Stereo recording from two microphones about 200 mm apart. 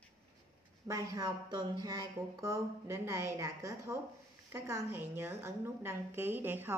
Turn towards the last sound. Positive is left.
turn(degrees=-10)  # may be behind; listen again after turning